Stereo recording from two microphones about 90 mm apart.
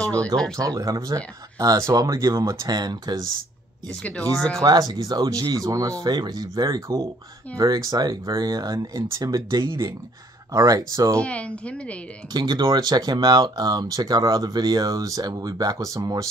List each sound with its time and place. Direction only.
0.0 s a sound: 15° left (ahead or behind)
0.6 s speech: 40° right (ahead or behind)
4.0 s speech: 10° left (ahead or behind)
4.6 s speech: 45° right (ahead or behind)
10.5 s speech: 40° right (ahead or behind)
11.1 s speech: 15° left (ahead or behind)
12.3 s speech: 55° right (ahead or behind)